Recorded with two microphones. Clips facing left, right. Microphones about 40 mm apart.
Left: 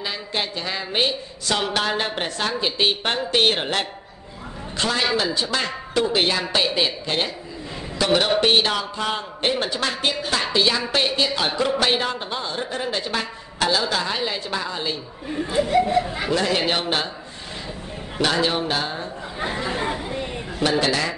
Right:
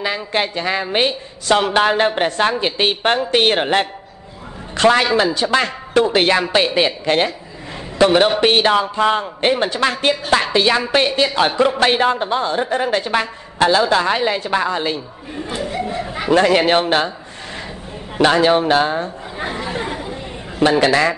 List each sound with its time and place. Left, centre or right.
0.0 s a woman's voice: right
4.7 s a man's voice: right
8.1 s a woman's voice: right
16.3 s a woman's voice: right
18.1 s a woman's voice: right
19.3 s speech: centre
20.5 s a man's voice: right
20.9 s a woman's voice: right